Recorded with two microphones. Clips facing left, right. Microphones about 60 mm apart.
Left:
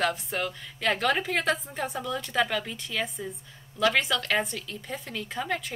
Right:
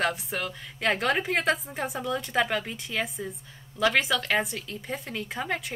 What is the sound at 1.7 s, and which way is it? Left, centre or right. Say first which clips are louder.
A woman's voice: right 1 dB; centre.